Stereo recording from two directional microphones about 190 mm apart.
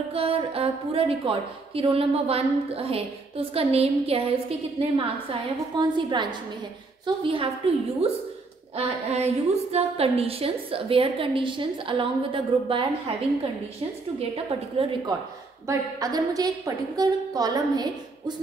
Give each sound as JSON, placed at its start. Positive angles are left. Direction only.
{"t": 0.1, "sound": "a woman's voice", "side_deg": -30}
{"t": 7.2, "sound": "a woman's voice", "side_deg": -30}
{"t": 14.3, "sound": "a woman's voice", "side_deg": -30}
{"t": 15.6, "sound": "a woman's voice", "side_deg": -15}